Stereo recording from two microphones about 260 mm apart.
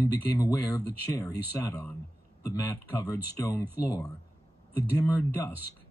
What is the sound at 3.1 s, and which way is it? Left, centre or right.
Speech, centre.